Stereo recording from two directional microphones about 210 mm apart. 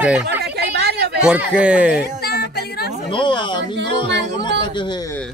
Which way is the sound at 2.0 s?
45° left (ahead or behind).